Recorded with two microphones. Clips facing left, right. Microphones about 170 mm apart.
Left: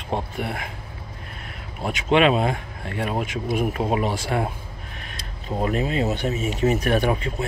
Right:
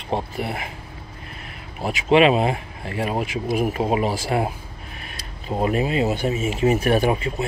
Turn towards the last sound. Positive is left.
turn(degrees=-10)  # may be behind; listen again after turning